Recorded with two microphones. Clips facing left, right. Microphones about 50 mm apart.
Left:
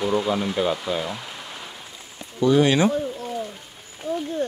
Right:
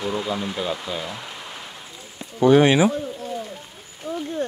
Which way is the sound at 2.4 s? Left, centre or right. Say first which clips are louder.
Right 3 dB; right.